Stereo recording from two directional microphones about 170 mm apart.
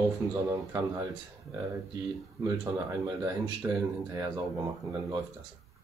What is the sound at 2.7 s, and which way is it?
Speech, 20° right (ahead or behind).